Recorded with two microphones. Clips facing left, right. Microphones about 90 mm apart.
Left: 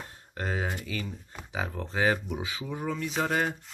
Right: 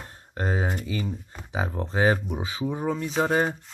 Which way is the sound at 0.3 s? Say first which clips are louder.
Right 4 dB; 30° right (ahead or behind).